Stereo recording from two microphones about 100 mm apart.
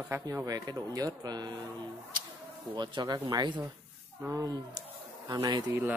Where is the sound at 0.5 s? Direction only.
40° right (ahead or behind).